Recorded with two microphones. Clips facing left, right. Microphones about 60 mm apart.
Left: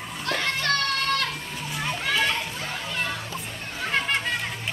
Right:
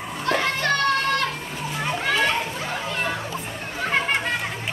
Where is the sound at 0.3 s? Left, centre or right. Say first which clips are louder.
Right 4 dB; centre.